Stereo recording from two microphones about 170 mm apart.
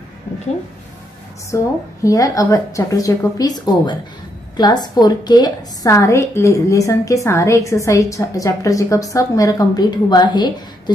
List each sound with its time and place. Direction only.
1.5 s a woman's voice: 15° left (ahead or behind)